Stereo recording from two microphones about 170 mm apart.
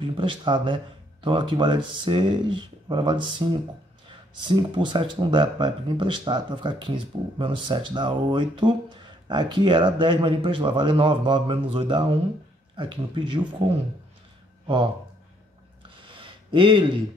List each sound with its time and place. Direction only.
0.0 s speech: 30° right (ahead or behind)
16.1 s a sound: 30° right (ahead or behind)
16.5 s speech: 30° right (ahead or behind)